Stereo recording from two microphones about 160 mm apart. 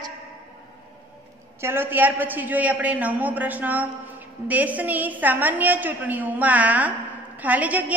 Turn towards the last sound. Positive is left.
turn(degrees=-10)  # may be behind; listen again after turning